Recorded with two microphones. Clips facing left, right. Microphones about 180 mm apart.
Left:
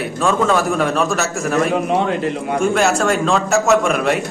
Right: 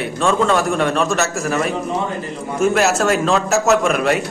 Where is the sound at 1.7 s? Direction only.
75° left (ahead or behind).